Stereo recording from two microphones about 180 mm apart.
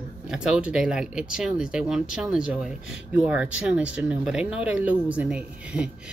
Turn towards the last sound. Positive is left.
turn(degrees=-5)  # may be behind; listen again after turning